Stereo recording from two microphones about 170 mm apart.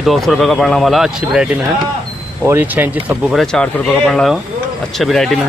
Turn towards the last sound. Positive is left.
turn(degrees=0)  # may be behind; listen again after turning